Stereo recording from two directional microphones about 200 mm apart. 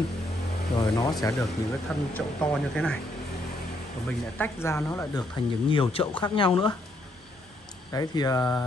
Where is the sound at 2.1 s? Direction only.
5° left (ahead or behind).